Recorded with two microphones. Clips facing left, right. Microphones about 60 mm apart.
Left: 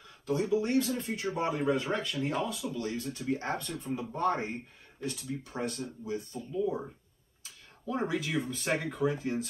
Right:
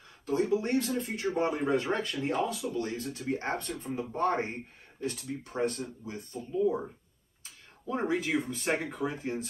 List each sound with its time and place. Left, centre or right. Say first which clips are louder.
0.3 s speech: right 1 dB; right
7.9 s speech: right 2 dB; right